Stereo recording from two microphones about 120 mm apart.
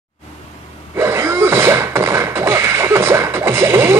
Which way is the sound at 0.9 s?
20° right (ahead or behind).